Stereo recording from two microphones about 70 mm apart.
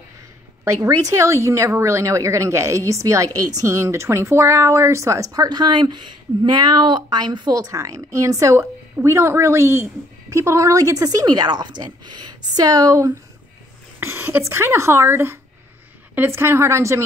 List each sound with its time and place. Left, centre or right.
0.7 s speech: right
5.3 s speech: right
13.9 s a sound: right
14.4 s speech: right